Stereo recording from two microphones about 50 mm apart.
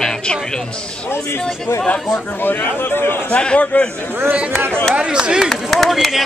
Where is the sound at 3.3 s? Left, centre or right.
Left.